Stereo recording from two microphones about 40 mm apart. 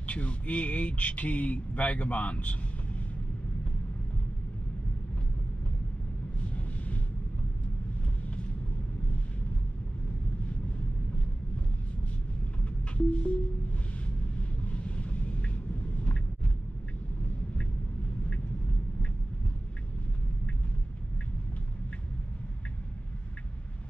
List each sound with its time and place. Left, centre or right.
0.0 s speech: left
6.4 s vehicle: left
12.6 s music: left
14.0 s vehicle: left